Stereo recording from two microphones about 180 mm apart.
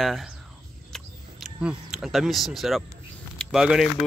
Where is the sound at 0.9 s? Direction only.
Centre (ahead or behind).